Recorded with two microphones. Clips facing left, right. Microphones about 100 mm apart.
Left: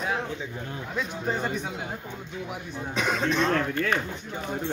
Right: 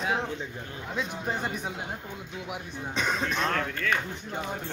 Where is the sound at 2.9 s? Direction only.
5° left (ahead or behind).